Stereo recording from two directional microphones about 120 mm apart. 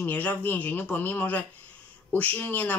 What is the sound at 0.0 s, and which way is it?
Speech, 15° left (ahead or behind).